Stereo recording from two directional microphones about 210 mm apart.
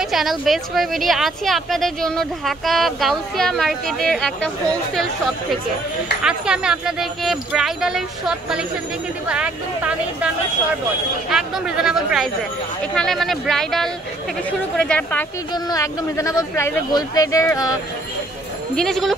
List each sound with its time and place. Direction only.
0.0 s speech: centre (ahead or behind)
6.2 s speech: 5° right (ahead or behind); by 17.7 s 15° left (ahead or behind)
18.8 s speech: centre (ahead or behind)